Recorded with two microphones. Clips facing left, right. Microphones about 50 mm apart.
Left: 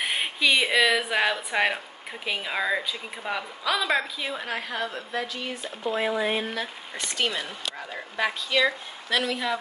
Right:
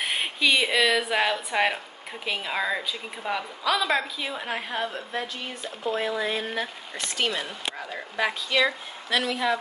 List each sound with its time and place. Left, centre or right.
0.0 s a woman's voice: centre
4.5 s a woman's voice: right
5.9 s speech: left
6.6 s speech: centre